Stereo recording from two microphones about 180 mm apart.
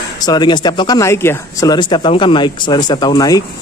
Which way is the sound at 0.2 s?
25° left (ahead or behind).